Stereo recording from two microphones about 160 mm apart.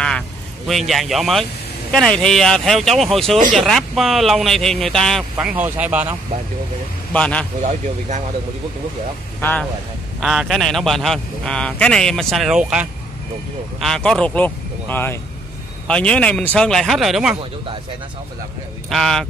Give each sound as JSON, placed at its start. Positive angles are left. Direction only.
{"t": 0.7, "sound": "a man's voice", "side_deg": 0}
{"t": 5.5, "sound": "speech", "side_deg": -10}
{"t": 7.1, "sound": "a man's voice", "side_deg": 10}
{"t": 9.4, "sound": "speech", "side_deg": 10}
{"t": 10.2, "sound": "a man's voice", "side_deg": 0}
{"t": 18.9, "sound": "a man's voice", "side_deg": 5}